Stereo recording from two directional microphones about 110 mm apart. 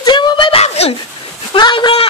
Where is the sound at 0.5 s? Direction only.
75° left (ahead or behind).